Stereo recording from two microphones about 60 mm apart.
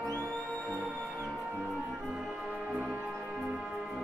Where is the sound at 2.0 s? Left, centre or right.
Centre.